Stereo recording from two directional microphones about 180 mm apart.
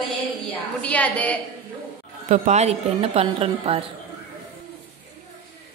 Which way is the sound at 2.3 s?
40° right (ahead or behind).